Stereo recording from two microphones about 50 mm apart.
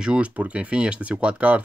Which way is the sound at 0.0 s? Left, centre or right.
Right.